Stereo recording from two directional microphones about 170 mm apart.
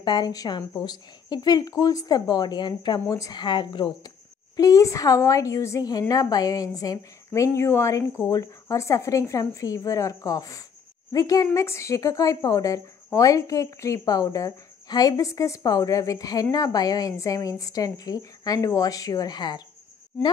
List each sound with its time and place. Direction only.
0.0 s a woman's voice: 25° left (ahead or behind)